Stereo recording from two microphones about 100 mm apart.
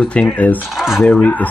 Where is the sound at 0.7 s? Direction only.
5° right (ahead or behind).